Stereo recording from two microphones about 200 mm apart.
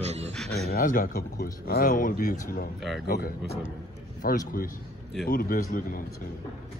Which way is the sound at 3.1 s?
50° left (ahead or behind).